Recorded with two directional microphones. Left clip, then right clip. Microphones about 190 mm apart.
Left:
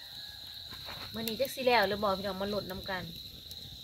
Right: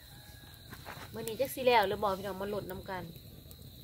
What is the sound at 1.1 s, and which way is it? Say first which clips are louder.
Speech: left 1 dB; 35° right (ahead or behind).